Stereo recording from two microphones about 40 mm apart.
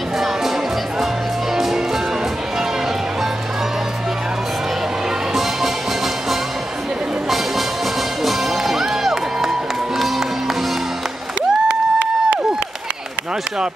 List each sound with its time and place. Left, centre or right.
1.5 s music: centre
5.3 s music: centre
8.2 s music: centre
11.6 s a sound: right